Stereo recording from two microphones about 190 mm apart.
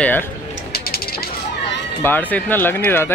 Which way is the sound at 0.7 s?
55° left (ahead or behind).